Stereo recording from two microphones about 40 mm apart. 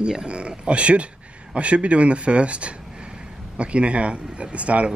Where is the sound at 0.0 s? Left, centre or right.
Right.